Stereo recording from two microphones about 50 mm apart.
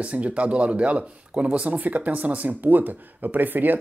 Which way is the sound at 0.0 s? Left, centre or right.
Right.